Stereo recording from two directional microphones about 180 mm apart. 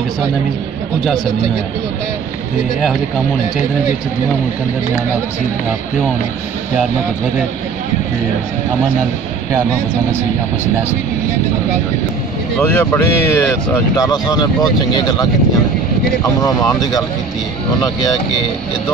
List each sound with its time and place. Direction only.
12.6 s speech: 15° left (ahead or behind)
16.3 s speech: 20° left (ahead or behind)